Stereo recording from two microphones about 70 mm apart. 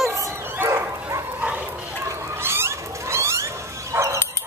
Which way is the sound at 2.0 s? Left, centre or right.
Right.